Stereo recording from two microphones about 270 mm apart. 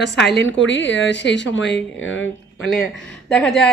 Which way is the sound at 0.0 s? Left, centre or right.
Left.